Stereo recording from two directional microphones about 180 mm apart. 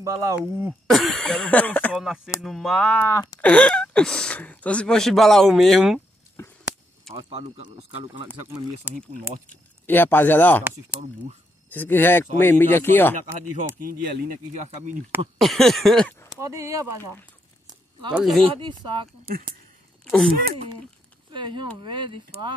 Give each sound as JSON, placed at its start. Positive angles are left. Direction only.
{"t": 0.0, "sound": "speech", "side_deg": -15}
{"t": 7.2, "sound": "speech", "side_deg": -30}
{"t": 9.0, "sound": "speech", "side_deg": 10}
{"t": 11.7, "sound": "speech", "side_deg": 10}
{"t": 13.7, "sound": "speech", "side_deg": -60}
{"t": 14.5, "sound": "speech", "side_deg": -40}
{"t": 15.4, "sound": "speech", "side_deg": 0}
{"t": 16.3, "sound": "speech", "side_deg": -15}
{"t": 18.1, "sound": "speech", "side_deg": 0}
{"t": 18.5, "sound": "speech", "side_deg": -25}
{"t": 20.1, "sound": "speech", "side_deg": 0}
{"t": 21.3, "sound": "speech", "side_deg": -25}